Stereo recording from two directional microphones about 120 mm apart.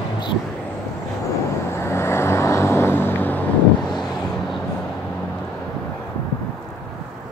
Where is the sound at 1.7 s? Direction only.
20° left (ahead or behind).